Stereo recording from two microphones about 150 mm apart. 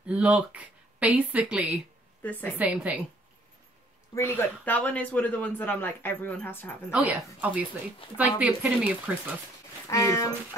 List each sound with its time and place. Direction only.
0.0 s speech: 10° right (ahead or behind)
2.2 s speech: 10° left (ahead or behind)
2.6 s speech: 10° right (ahead or behind)
4.1 s speech: 15° left (ahead or behind)
6.9 s speech: 5° right (ahead or behind)
9.8 s speech: 20° left (ahead or behind)